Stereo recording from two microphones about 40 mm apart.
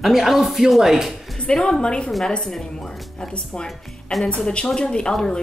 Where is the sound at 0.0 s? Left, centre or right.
Centre.